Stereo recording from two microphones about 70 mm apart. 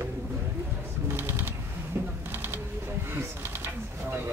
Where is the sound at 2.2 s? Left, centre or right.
Right.